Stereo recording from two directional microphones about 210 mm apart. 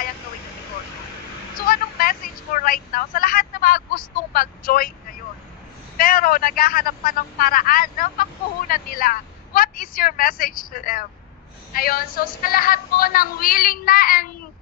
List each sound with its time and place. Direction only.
1.7 s vehicle: 45° left (ahead or behind)
5.9 s a man's voice: 45° left (ahead or behind)